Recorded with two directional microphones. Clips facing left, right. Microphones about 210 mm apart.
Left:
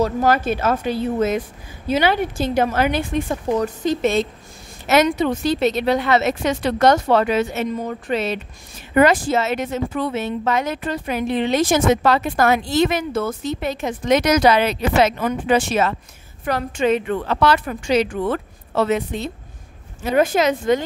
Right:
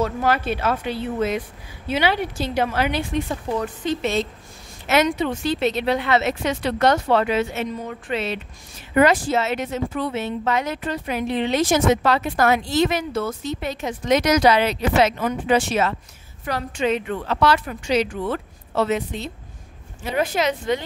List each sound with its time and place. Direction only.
0.0 s speech: 40° left (ahead or behind)